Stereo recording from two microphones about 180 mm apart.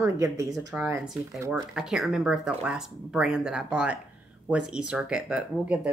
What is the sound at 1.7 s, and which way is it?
Speech, 5° right (ahead or behind).